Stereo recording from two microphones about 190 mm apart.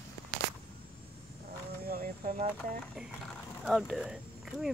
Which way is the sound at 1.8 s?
50° right (ahead or behind).